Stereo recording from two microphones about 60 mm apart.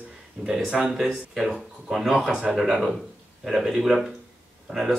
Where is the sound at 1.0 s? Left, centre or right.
Centre.